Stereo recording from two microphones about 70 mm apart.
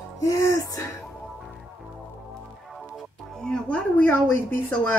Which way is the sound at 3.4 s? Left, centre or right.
Centre.